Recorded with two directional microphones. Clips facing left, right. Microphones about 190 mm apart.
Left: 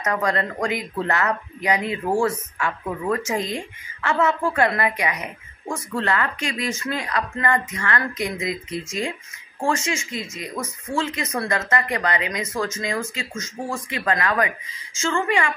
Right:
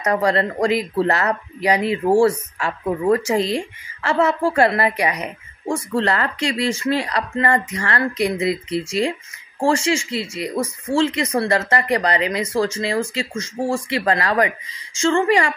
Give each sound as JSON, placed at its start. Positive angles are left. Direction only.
{"t": 0.0, "sound": "speech", "side_deg": -35}